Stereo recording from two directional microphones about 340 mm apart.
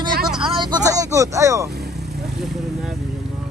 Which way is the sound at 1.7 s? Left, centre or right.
Right.